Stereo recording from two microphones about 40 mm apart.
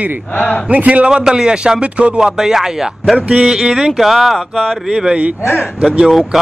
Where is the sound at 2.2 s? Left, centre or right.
Centre.